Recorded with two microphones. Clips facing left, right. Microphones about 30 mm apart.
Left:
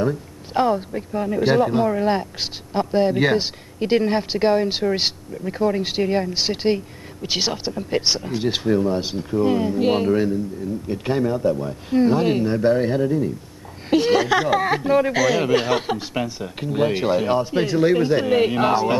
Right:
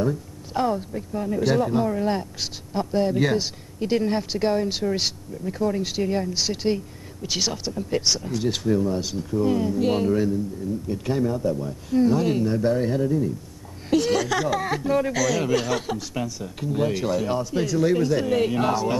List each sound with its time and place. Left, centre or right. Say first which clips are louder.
0.0 s a man's voice: left 2 dB; left